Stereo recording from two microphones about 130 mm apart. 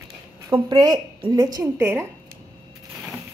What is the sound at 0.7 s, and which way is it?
A woman's voice, 30° right (ahead or behind).